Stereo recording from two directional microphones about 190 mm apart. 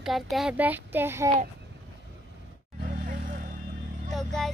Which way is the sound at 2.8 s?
45° right (ahead or behind).